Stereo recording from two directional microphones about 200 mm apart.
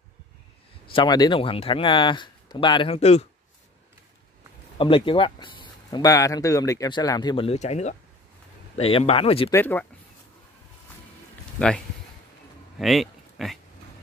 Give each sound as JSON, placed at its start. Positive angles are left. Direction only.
{"t": 0.9, "sound": "speech", "side_deg": 20}
{"t": 4.7, "sound": "speech", "side_deg": 25}
{"t": 9.5, "sound": "speech", "side_deg": 10}
{"t": 12.7, "sound": "a sound", "side_deg": 0}